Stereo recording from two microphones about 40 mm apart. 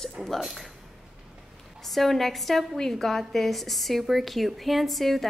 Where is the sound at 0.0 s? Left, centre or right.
Centre.